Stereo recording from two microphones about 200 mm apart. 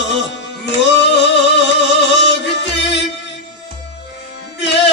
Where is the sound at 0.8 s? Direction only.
60° left (ahead or behind).